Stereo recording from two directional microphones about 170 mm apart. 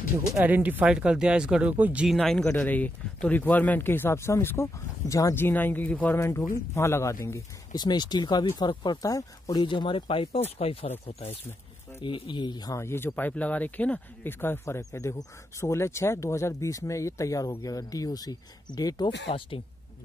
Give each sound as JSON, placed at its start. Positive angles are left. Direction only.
{"t": 0.3, "sound": "speech", "side_deg": -10}